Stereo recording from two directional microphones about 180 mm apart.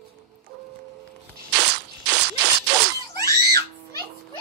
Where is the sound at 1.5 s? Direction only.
70° right (ahead or behind).